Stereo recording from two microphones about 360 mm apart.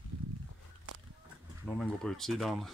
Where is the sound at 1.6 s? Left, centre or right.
Centre.